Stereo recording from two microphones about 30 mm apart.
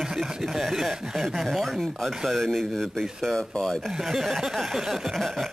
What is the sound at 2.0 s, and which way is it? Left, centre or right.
Speech, centre.